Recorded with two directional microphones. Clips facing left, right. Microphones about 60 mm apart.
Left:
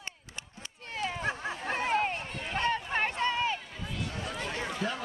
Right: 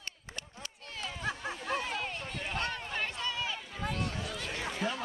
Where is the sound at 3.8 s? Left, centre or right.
Right.